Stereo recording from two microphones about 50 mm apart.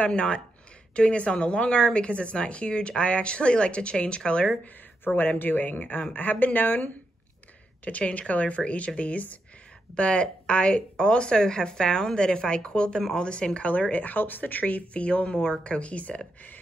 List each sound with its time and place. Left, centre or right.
0.0 s a woman's voice: left
5.0 s a woman's voice: left